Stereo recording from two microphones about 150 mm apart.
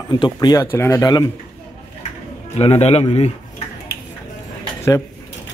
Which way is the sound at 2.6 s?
40° left (ahead or behind).